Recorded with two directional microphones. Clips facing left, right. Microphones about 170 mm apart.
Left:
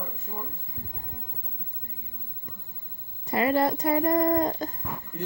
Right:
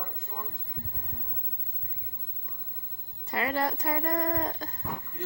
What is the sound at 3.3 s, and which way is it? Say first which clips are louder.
A woman's voice: left 6 dB; 25° left (ahead or behind).